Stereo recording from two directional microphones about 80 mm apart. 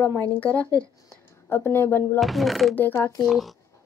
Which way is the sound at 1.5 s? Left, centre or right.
Left.